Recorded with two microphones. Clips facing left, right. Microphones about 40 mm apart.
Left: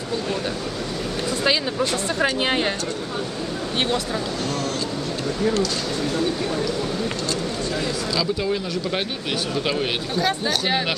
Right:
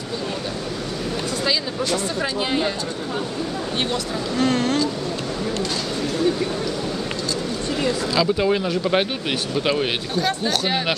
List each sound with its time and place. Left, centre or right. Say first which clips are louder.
1.4 s speech: left 3 dB; left
4.4 s speech: right 6 dB; right
7.8 s speech: right 7 dB; right
9.6 s speech: right 4 dB; centre
10.2 s speech: even; centre